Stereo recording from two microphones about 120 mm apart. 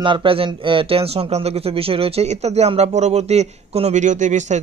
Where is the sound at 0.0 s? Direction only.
45° right (ahead or behind).